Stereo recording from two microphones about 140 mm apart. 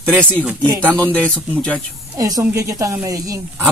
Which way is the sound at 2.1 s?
25° right (ahead or behind).